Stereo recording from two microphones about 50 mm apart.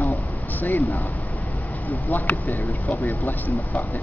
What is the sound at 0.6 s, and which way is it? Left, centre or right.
Speech, left.